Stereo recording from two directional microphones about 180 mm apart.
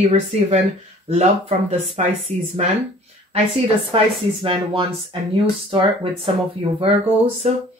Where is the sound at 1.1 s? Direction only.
35° right (ahead or behind).